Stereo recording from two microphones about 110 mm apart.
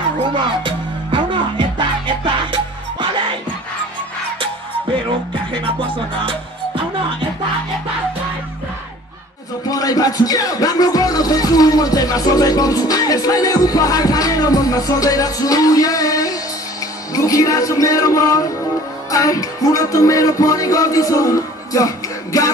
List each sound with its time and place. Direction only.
0.2 s music: 50° right (ahead or behind)
4.9 s music: 50° right (ahead or behind)
9.7 s music: 35° left (ahead or behind)